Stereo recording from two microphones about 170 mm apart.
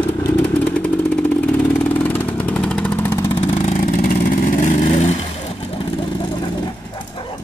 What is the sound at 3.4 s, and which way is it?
Vehicle, 40° left (ahead or behind).